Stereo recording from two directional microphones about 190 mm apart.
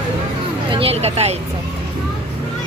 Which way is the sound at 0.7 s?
30° right (ahead or behind).